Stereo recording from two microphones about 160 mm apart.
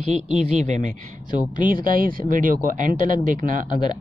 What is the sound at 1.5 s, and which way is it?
Speech, 60° right (ahead or behind).